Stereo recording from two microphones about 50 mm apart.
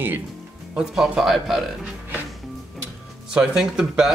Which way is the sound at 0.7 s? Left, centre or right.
Centre.